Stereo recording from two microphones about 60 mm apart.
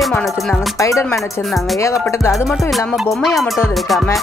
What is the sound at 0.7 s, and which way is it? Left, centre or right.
Speech, left.